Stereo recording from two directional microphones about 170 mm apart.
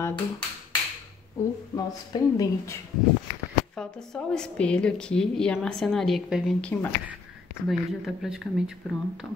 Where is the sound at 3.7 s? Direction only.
5° left (ahead or behind).